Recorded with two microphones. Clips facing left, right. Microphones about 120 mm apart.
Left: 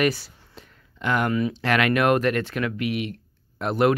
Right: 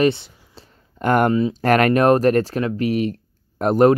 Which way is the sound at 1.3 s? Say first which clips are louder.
Right 5 dB; 25° right (ahead or behind).